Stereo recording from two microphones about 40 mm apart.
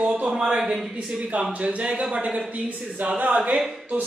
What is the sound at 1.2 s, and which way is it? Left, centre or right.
Speech, right.